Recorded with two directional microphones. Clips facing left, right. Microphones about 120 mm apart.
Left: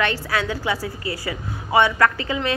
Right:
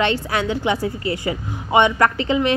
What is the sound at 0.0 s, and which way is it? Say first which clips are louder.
A woman's voice: right 3 dB; 25° right (ahead or behind).